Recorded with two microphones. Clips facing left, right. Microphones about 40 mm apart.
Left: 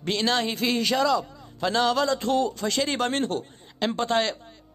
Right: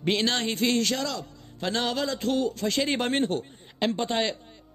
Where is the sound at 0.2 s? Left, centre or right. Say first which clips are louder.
Left 1 dB; centre.